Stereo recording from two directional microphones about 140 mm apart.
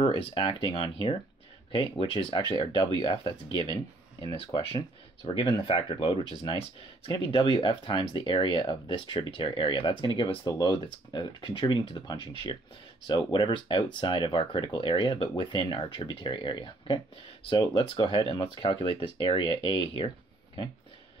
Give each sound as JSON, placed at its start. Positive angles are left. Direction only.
{"t": 0.0, "sound": "speech", "side_deg": 40}